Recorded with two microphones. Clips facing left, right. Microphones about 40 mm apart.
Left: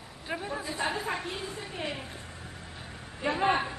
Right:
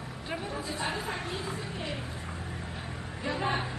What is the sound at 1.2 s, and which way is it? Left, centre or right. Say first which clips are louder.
Speech: right 1 dB; right.